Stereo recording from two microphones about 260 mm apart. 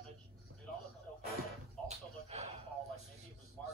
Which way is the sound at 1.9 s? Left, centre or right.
Right.